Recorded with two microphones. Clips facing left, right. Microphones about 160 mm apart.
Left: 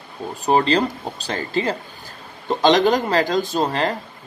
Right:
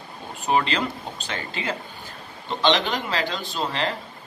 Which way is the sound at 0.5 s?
35° left (ahead or behind).